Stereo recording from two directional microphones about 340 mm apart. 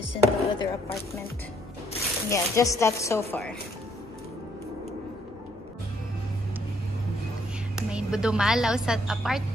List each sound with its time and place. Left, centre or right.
0.0 s speech: centre
2.2 s speech: centre
7.7 s a woman's voice: centre